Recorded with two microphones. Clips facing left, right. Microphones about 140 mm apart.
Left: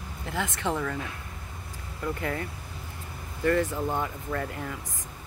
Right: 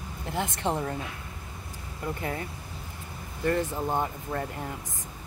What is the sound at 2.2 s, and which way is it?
Speech, 25° right (ahead or behind).